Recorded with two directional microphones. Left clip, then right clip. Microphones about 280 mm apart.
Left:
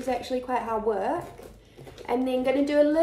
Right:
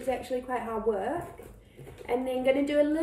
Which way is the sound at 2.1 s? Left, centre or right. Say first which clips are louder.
Left 2 dB; centre.